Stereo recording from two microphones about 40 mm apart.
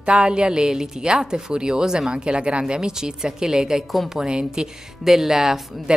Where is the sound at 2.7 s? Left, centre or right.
Centre.